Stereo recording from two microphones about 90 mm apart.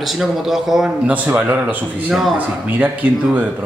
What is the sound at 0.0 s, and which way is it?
A man's voice, centre (ahead or behind).